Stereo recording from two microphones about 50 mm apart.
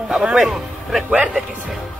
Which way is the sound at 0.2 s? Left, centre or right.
Centre.